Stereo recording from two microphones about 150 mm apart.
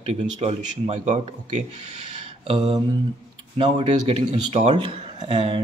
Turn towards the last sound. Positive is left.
turn(degrees=-40)  # may be behind; listen again after turning